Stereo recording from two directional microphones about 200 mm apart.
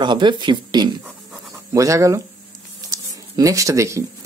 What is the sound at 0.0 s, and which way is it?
Speech, 20° right (ahead or behind).